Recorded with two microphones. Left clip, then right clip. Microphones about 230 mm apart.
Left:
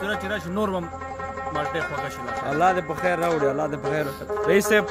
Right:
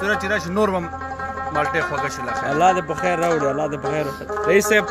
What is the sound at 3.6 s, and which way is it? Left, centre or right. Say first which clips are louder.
A man's voice: right 3 dB; centre.